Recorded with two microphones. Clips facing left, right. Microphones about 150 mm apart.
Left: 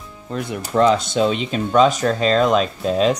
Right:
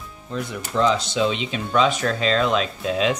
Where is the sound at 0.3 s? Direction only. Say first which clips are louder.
Left 4 dB; 55° left (ahead or behind); by 3.2 s 40° left (ahead or behind).